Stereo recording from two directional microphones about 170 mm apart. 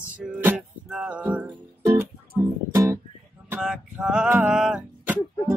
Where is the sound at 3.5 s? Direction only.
5° right (ahead or behind).